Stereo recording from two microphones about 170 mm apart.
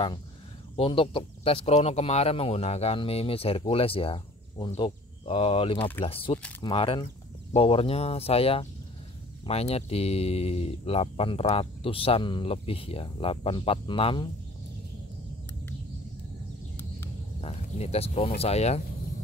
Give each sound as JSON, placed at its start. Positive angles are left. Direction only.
{"t": 0.7, "sound": "speech", "side_deg": 35}
{"t": 17.4, "sound": "speech", "side_deg": 40}